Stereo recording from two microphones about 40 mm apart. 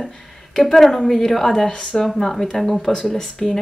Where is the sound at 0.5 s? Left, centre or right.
Centre.